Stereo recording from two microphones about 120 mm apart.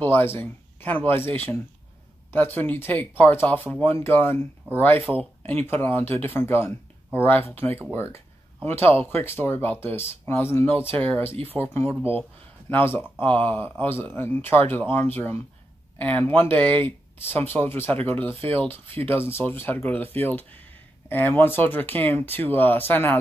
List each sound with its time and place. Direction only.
0.0 s speech: 15° left (ahead or behind)